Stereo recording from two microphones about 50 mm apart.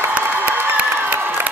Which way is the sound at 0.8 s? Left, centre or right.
Right.